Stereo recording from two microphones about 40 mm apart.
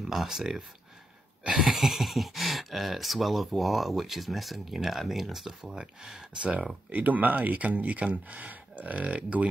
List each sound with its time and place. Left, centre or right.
0.0 s speech: centre
1.4 s cough: centre
1.7 s speech: centre
6.9 s speech: right